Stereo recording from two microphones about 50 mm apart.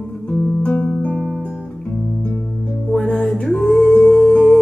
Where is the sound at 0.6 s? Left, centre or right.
Left.